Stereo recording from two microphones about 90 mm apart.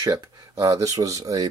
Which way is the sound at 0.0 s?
45° right (ahead or behind).